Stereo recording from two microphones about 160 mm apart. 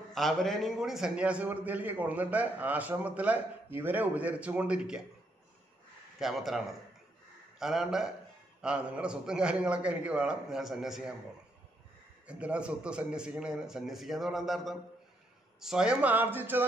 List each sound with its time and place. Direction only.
0.1 s a man's voice: centre (ahead or behind)
6.1 s a man's voice: centre (ahead or behind)
12.3 s a man's voice: 5° right (ahead or behind)